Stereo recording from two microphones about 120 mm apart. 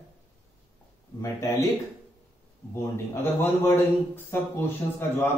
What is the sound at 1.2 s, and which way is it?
Speech, 25° left (ahead or behind).